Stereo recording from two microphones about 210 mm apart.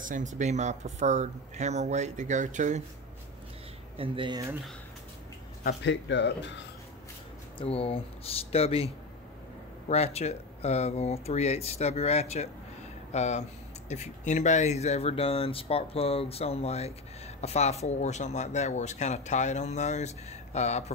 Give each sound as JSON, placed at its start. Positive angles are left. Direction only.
{"t": 0.0, "sound": "speech", "side_deg": -35}
{"t": 4.0, "sound": "speech", "side_deg": -25}
{"t": 5.6, "sound": "speech", "side_deg": 55}
{"t": 7.5, "sound": "speech", "side_deg": 30}